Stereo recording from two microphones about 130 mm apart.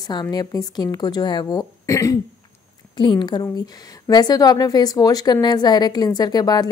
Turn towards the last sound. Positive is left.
turn(degrees=30)  # may be behind; listen again after turning